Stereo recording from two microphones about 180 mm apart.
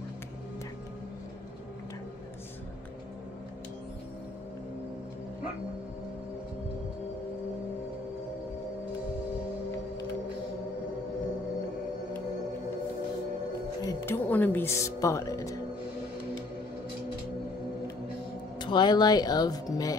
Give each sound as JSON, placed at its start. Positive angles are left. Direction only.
{"t": 13.8, "sound": "a woman's voice", "side_deg": 15}
{"t": 18.6, "sound": "speech", "side_deg": 25}